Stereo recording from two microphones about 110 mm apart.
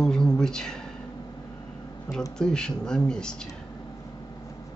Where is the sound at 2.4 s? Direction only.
5° left (ahead or behind).